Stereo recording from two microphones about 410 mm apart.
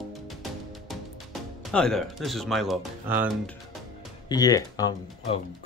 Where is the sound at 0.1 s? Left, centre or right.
Centre.